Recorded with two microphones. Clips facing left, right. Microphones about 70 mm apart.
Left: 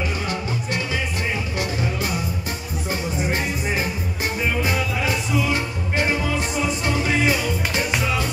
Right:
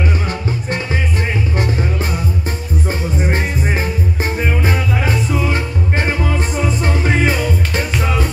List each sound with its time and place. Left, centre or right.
1.6 s music: right